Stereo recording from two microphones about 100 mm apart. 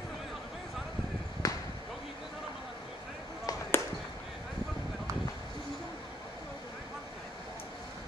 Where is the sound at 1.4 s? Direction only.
35° left (ahead or behind).